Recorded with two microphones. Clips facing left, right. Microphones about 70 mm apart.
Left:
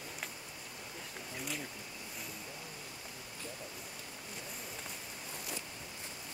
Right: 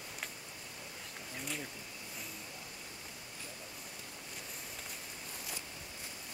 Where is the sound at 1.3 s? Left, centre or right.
Centre.